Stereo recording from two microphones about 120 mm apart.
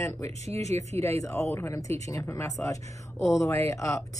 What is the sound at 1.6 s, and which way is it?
Speech, 25° left (ahead or behind).